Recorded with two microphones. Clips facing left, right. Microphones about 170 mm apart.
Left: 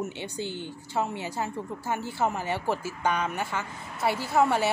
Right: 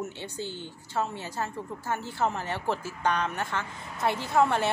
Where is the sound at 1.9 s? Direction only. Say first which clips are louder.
Left 1 dB; 10° left (ahead or behind).